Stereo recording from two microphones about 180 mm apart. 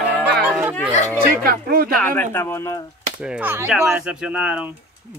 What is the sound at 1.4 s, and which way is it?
Speech, 55° right (ahead or behind).